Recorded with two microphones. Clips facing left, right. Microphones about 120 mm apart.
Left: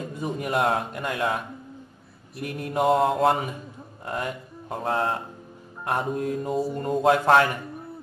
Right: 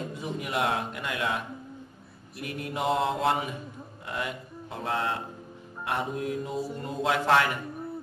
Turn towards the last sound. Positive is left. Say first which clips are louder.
# left 5 dB
turn(degrees=45)  # may be behind; listen again after turning